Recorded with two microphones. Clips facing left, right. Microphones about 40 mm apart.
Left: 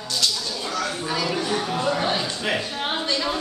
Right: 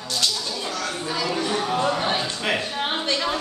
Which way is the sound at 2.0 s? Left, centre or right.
Centre.